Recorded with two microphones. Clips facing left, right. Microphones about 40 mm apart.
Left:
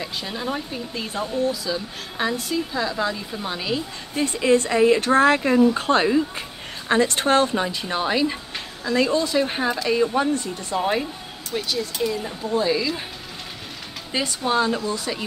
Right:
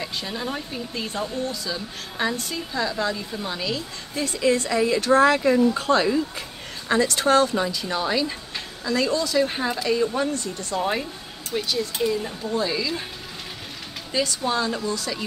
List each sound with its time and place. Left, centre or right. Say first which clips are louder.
0.0 s a woman's voice: left 1 dB; centre; by 10.9 s left
11.5 s speech: even; centre
14.1 s speech: left 2 dB; left